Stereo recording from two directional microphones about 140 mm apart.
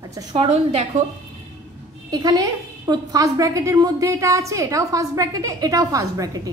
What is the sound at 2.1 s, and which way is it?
A woman's voice, 25° right (ahead or behind).